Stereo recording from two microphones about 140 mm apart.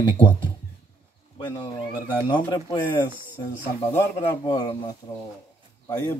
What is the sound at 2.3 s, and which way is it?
Speech, 30° left (ahead or behind).